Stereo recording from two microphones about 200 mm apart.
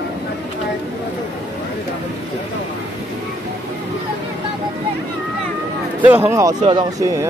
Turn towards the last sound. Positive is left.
turn(degrees=-20)  # may be behind; listen again after turning